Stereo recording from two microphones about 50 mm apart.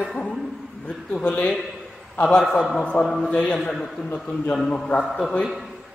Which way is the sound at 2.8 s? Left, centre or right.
Left.